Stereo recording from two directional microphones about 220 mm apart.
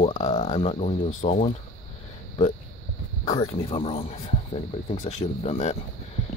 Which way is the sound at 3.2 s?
30° left (ahead or behind).